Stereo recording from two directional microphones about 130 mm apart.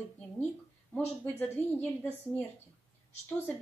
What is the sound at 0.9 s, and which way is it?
Speech, 15° left (ahead or behind).